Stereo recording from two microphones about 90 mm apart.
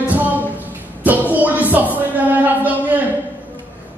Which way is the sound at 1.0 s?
15° right (ahead or behind).